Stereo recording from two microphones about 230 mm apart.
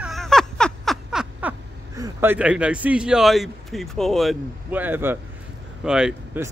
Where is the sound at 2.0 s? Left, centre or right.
Centre.